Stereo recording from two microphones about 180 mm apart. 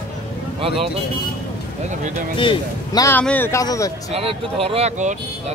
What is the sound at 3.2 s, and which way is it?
Speech, 10° left (ahead or behind).